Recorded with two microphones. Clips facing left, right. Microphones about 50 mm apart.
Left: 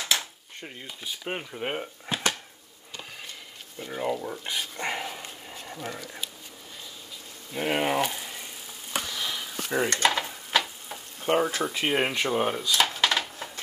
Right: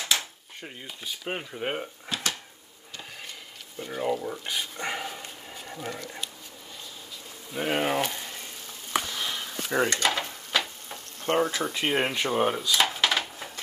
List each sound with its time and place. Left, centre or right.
0.1 s speech: centre
2.1 s a sound: left
3.7 s speech: centre
7.5 s speech: centre
9.1 s sniff: centre
9.4 s frying: centre